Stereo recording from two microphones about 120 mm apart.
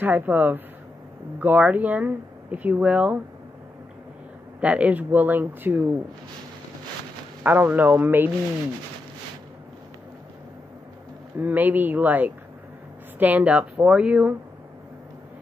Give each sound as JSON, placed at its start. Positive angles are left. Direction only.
{"t": 0.0, "sound": "speech", "side_deg": -15}
{"t": 4.6, "sound": "speech", "side_deg": -10}
{"t": 7.4, "sound": "speech", "side_deg": -15}
{"t": 11.3, "sound": "speech", "side_deg": -15}